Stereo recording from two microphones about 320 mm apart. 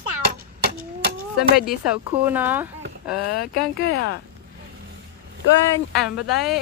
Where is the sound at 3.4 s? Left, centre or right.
Left.